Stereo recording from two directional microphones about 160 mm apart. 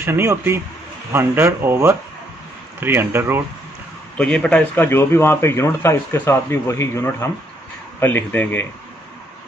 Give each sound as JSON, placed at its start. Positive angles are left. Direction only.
{"t": 0.0, "sound": "speech", "side_deg": -15}
{"t": 4.2, "sound": "a man's voice", "side_deg": 5}